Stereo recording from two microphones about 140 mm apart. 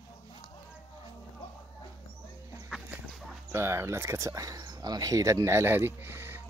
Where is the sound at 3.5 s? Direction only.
20° right (ahead or behind).